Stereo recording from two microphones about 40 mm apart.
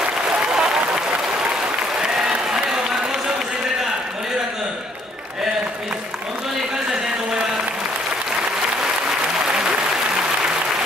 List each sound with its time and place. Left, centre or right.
0.5 s applause: centre
9.5 s applause: right